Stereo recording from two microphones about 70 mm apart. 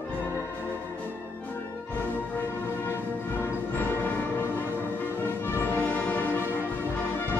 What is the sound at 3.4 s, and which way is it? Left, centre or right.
Music, left.